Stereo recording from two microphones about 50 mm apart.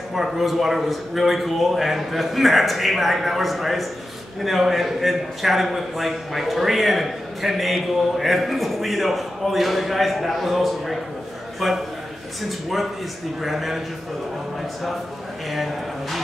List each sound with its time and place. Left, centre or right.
0.1 s a man's voice: centre
13.4 s a man's voice: centre
15.5 s speech: centre